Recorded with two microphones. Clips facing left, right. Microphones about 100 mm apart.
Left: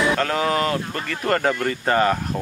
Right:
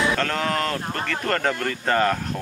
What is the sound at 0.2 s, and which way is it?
Speech, 5° left (ahead or behind).